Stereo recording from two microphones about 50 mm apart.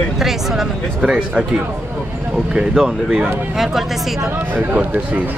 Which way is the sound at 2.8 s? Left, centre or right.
Centre.